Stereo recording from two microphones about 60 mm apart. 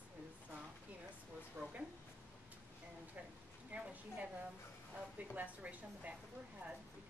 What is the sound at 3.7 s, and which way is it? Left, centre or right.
Speech, centre.